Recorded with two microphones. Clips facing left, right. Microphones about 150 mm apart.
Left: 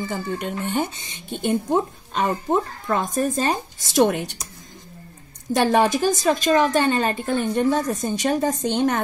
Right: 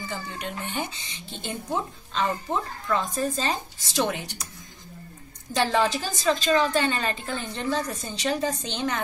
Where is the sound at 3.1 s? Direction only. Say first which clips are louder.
Left 5 dB; 55° left (ahead or behind).